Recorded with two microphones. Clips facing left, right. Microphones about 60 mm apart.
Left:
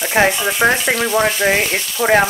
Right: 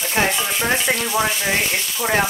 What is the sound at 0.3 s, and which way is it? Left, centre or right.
Speech, centre.